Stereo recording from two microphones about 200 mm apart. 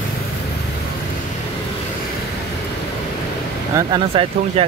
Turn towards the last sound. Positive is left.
turn(degrees=-25)  # may be behind; listen again after turning